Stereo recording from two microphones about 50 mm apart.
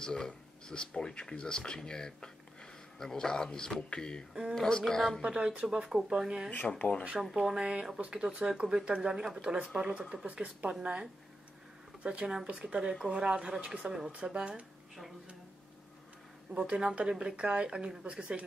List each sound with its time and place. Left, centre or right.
0.0 s speech: centre
5.2 s speech: right
5.7 s speech: centre
6.8 s speech: left
7.2 s speech: centre
14.5 s speech: centre
16.5 s speech: right